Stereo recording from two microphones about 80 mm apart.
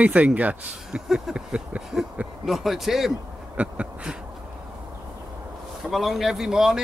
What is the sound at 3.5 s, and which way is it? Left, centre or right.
Speech, centre.